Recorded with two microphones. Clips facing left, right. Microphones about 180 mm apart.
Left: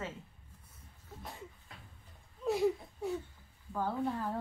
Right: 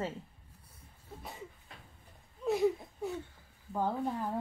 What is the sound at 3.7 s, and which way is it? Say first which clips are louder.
Speech: right 1 dB; 15° right (ahead or behind).